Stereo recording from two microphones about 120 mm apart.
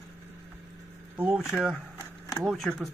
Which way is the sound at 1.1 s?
10° right (ahead or behind).